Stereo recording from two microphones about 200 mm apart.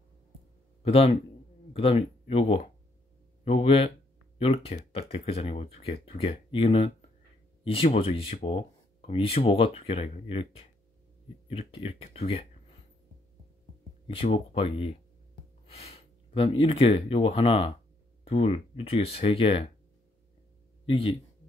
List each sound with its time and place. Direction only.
0.8 s speech: 30° left (ahead or behind)
14.0 s speech: 30° left (ahead or behind)
20.8 s speech: 30° left (ahead or behind)